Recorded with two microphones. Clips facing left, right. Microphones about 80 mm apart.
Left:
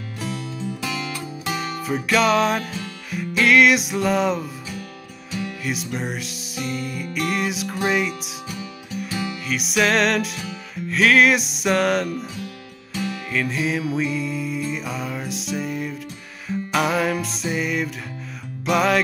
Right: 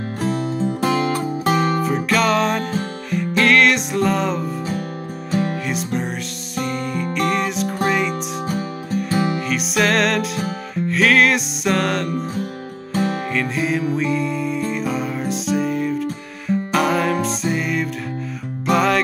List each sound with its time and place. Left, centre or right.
0.2 s music: right
2.0 s music: centre
5.3 s music: right
7.2 s music: centre
8.5 s music: right
9.5 s music: centre
12.1 s music: right
13.3 s music: centre